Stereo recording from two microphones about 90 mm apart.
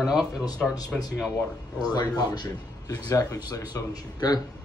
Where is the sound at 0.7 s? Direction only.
45° left (ahead or behind).